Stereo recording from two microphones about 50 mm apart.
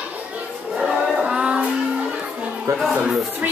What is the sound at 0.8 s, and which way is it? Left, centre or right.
Music, centre.